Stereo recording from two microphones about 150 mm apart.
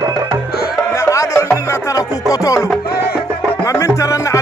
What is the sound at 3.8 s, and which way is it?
Music, 20° left (ahead or behind).